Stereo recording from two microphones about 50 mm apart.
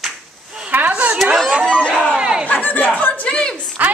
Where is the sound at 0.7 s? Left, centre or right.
Right.